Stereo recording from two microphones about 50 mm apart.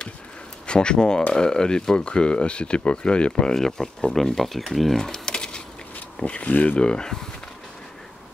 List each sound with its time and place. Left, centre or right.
0.7 s speech: centre
6.8 s speech: centre